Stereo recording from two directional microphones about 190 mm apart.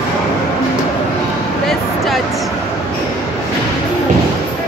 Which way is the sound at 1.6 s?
Centre (ahead or behind).